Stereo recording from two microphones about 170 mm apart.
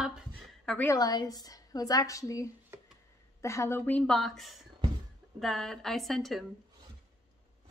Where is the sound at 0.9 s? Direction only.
25° left (ahead or behind); by 6.4 s centre (ahead or behind).